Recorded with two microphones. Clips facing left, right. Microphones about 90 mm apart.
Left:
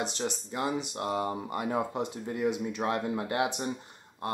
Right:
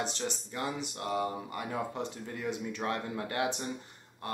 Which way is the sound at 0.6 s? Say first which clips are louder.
Left 5 dB; 20° left (ahead or behind).